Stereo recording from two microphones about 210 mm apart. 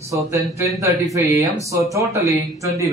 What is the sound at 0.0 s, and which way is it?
Speech, 15° right (ahead or behind).